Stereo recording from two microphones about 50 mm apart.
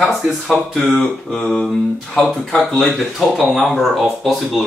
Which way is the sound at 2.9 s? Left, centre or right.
Centre.